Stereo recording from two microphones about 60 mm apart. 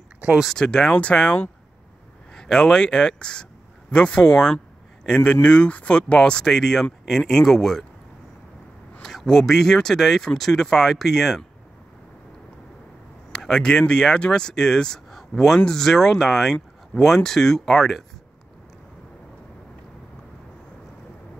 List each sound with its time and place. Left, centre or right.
0.5 s speech: centre
9.0 s speech: centre
13.3 s speech: centre